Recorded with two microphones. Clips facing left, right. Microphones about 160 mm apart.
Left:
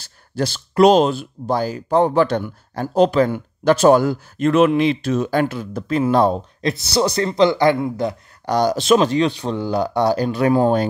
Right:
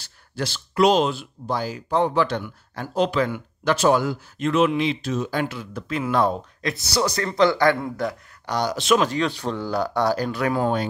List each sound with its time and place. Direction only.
0.0 s speech: 45° left (ahead or behind); by 8.2 s 20° left (ahead or behind)
8.5 s speech: 40° left (ahead or behind)